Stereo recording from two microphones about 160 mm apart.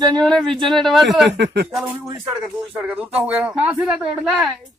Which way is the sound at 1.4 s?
90° right.